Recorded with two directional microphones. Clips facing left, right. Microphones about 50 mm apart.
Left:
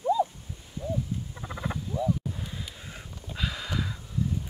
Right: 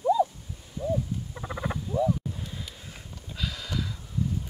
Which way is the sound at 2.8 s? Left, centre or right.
Left.